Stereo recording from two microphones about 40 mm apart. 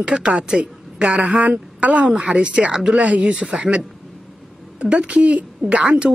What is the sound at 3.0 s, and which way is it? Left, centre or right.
Speech, right.